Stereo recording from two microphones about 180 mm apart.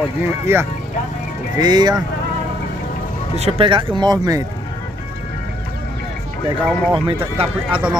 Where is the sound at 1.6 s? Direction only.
20° right (ahead or behind).